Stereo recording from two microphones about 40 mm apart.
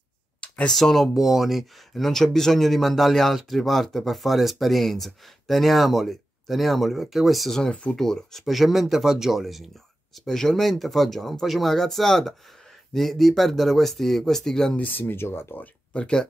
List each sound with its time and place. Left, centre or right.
0.7 s speech: centre
1.1 s speech: centre
2.1 s speech: centre
7.9 s speech: centre
10.1 s speech: centre
14.8 s speech: left
15.9 s speech: left